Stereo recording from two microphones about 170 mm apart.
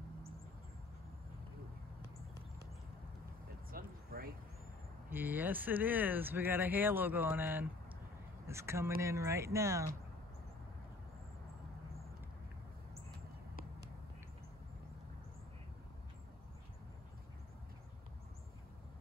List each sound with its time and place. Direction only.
3.7 s vehicle: 60° right (ahead or behind)
5.1 s speech: 10° right (ahead or behind)